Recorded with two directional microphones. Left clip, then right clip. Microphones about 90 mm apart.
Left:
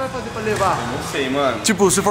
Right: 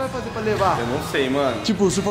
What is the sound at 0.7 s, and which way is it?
Speech, 30° right (ahead or behind).